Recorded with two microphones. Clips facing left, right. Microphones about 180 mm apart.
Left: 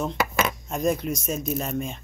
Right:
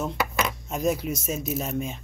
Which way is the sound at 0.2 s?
90° left.